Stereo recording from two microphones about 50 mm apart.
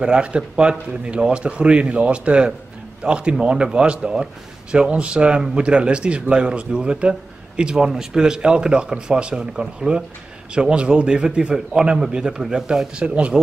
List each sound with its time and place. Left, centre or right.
0.0 s a man's voice: right